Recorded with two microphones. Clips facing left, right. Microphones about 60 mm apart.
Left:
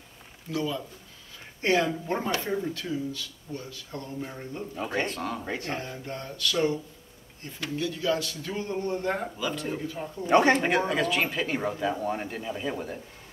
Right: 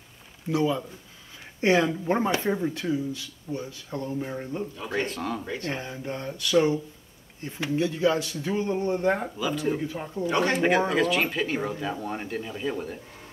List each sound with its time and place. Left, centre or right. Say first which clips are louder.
0.5 s speech: right 5 dB; right
4.7 s speech: left 2 dB; left
5.0 s speech: right 1 dB; centre
5.7 s speech: right 2 dB; centre
9.4 s speech: right 4 dB; centre
10.2 s speech: left 4 dB; left
10.5 s speech: right 2 dB; centre